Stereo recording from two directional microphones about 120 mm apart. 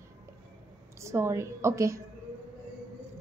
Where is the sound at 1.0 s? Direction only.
25° right (ahead or behind).